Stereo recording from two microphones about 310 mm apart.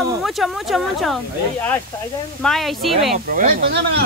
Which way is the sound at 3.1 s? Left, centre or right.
Right.